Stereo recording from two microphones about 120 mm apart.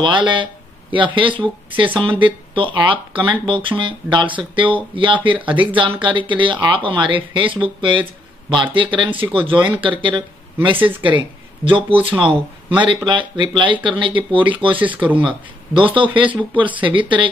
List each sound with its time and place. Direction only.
0.0 s speech: 40° right (ahead or behind)
14.8 s speech: 15° right (ahead or behind)
15.2 s speech: 45° right (ahead or behind)